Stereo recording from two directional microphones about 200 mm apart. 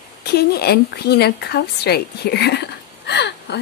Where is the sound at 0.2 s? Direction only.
55° left (ahead or behind).